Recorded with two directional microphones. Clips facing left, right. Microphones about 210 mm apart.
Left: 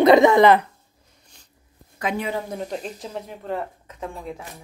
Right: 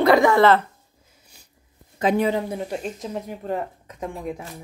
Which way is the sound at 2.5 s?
5° right (ahead or behind).